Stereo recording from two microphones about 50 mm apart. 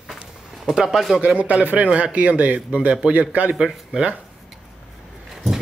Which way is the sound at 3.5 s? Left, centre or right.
Centre.